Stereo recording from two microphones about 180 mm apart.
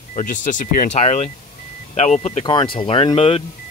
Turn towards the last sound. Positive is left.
turn(degrees=30)  # may be behind; listen again after turning